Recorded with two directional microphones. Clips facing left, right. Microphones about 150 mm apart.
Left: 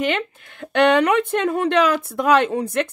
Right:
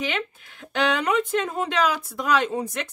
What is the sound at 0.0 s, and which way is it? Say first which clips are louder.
Speech: left 6 dB; 60° left (ahead or behind).